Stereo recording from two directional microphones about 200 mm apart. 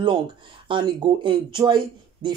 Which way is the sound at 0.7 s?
25° right (ahead or behind).